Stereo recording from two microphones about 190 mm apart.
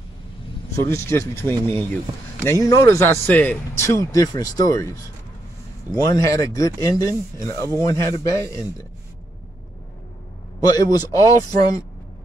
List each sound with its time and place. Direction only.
0.8 s speech: 15° left (ahead or behind)
10.6 s speech: 20° left (ahead or behind)